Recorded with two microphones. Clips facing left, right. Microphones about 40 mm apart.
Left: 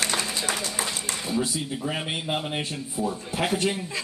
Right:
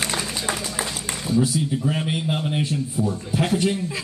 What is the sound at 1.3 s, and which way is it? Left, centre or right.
Speech, centre.